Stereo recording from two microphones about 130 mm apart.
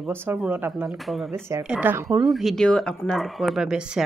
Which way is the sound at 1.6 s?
10° right (ahead or behind).